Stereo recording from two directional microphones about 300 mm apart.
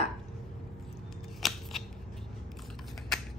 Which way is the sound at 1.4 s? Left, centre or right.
Centre.